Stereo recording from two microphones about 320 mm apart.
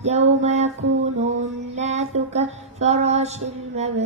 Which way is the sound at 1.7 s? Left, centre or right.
Right.